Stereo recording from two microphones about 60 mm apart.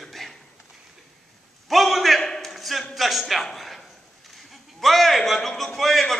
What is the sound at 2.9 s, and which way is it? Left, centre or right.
Speech, centre.